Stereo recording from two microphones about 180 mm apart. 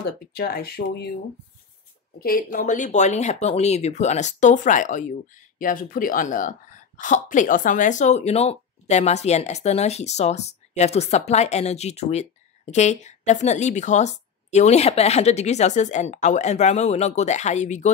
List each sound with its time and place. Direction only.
0.0 s speech: 60° left (ahead or behind)
2.1 s speech: 55° left (ahead or behind)